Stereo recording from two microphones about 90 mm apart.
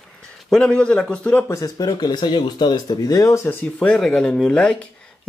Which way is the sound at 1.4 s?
40° left (ahead or behind).